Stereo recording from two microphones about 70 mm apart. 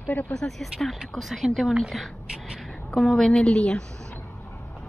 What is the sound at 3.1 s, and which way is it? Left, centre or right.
Speech, centre.